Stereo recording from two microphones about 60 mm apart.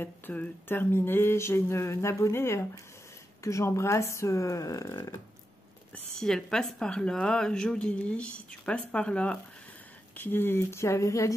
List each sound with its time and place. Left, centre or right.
0.0 s speech: left
0.7 s speech: left
6.1 s speech: centre
10.1 s speech: left